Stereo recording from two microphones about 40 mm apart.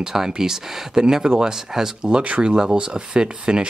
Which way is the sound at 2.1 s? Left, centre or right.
Right.